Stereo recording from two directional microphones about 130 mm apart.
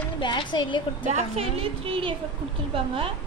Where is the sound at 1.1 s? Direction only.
50° right (ahead or behind).